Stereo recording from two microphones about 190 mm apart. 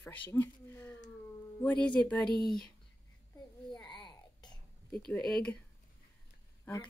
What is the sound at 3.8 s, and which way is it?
Babbling, 25° left (ahead or behind).